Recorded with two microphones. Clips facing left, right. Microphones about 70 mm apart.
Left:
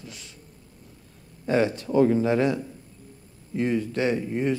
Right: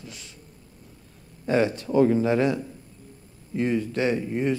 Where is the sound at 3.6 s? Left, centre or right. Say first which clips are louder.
Even; centre.